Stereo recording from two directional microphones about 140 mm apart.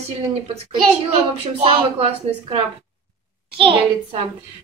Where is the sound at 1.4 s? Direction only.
45° right (ahead or behind).